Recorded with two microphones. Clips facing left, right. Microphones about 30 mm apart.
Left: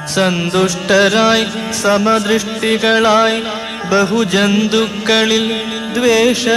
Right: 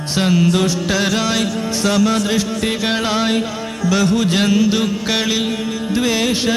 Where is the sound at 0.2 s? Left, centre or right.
Centre.